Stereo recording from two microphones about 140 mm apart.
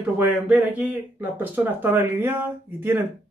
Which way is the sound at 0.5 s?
10° right (ahead or behind).